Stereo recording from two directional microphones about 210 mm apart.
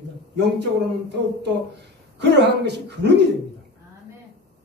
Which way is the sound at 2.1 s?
55° right (ahead or behind).